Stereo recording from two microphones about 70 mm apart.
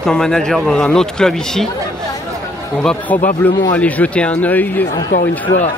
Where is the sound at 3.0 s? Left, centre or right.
Left.